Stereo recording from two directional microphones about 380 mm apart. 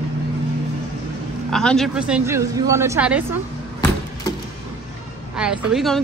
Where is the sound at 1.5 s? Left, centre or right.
Centre.